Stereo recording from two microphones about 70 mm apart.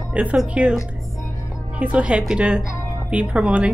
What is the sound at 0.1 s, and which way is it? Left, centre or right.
Speech, centre.